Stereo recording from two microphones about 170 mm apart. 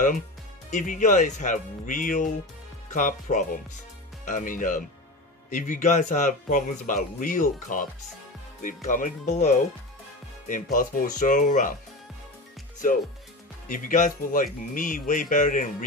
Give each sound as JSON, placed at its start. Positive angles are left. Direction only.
{"t": 0.7, "sound": "speech", "side_deg": 45}
{"t": 12.8, "sound": "speech", "side_deg": 50}